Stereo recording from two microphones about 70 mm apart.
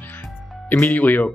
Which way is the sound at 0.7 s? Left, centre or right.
Left.